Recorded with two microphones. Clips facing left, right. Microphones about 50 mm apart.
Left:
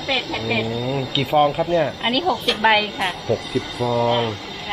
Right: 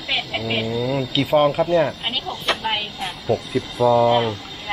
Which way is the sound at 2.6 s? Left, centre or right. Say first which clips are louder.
Left 8 dB; left.